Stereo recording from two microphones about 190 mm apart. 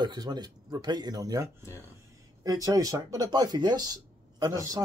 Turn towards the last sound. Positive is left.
turn(degrees=-20)  # may be behind; listen again after turning